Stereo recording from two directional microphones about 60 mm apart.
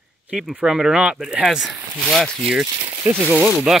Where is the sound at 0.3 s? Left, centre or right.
Centre.